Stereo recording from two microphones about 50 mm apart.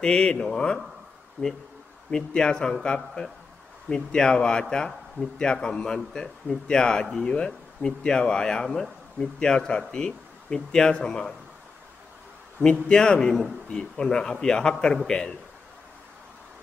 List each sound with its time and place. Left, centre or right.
0.0 s a man's voice: centre
1.4 s speech: left
2.0 s a man's voice: centre
8.6 s speech: centre
9.2 s a man's voice: centre
12.8 s a man's voice: centre
13.3 s speech: centre
13.7 s a man's voice: centre